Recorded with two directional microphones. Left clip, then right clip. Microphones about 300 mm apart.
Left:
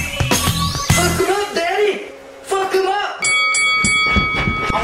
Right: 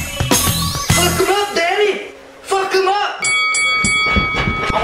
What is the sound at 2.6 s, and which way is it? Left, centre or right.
Music, centre.